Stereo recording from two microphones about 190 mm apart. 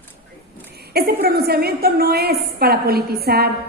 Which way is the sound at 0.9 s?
55° right (ahead or behind).